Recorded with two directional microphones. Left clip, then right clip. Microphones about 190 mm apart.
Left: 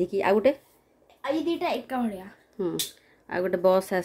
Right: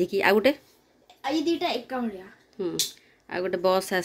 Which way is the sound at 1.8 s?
30° left (ahead or behind).